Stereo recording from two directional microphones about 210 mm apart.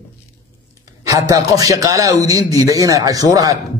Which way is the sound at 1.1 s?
15° right (ahead or behind).